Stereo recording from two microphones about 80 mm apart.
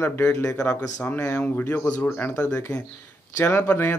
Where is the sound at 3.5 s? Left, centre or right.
Left.